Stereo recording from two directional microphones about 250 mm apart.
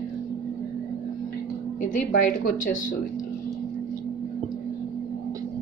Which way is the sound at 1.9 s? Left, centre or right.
Left.